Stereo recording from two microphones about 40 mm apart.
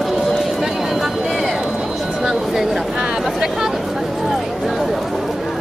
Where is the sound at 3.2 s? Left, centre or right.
Centre.